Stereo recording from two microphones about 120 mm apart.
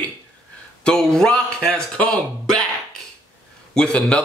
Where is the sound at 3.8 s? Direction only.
10° left (ahead or behind).